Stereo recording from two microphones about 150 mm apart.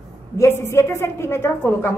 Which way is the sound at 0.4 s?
15° left (ahead or behind).